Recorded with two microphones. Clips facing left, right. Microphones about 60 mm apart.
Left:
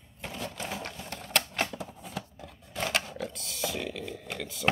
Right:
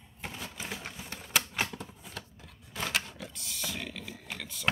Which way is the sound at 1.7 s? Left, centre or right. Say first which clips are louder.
Left 5 dB; centre.